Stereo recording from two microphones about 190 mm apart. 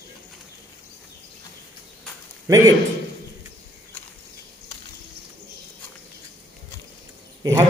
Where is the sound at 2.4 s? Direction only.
15° right (ahead or behind).